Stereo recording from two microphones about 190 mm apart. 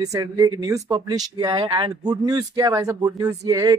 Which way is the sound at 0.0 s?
20° right (ahead or behind).